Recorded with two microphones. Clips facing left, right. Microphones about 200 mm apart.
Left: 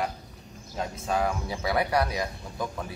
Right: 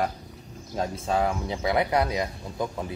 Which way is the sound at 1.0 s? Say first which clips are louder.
Right 1 dB; 20° right (ahead or behind).